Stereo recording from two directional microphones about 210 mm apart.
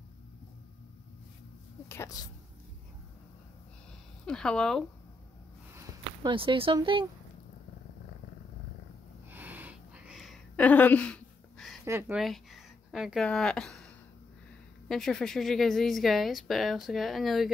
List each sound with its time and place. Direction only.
1.9 s speech: 15° left (ahead or behind)
4.3 s a woman's voice: 5° left (ahead or behind)
5.8 s speech: 25° right (ahead or behind)
9.3 s a sound: 10° right (ahead or behind)
11.8 s a woman's voice: 10° right (ahead or behind)